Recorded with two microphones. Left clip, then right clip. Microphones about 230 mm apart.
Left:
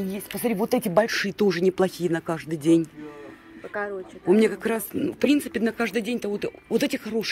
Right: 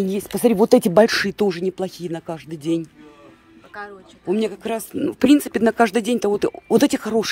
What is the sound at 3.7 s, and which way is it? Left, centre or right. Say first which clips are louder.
Speech: left 5 dB; left.